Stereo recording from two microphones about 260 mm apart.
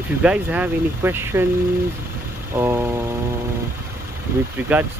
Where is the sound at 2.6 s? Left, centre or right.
Centre.